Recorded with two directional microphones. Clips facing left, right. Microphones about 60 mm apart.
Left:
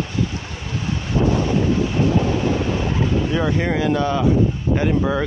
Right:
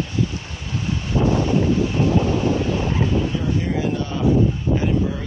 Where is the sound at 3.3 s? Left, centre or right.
Left.